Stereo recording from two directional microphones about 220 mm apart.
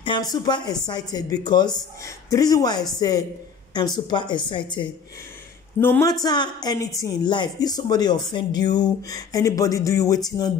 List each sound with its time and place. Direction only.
0.3 s a woman's voice: 20° left (ahead or behind)
5.8 s a woman's voice: 10° left (ahead or behind)